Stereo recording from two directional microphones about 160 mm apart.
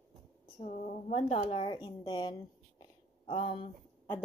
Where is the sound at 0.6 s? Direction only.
45° left (ahead or behind).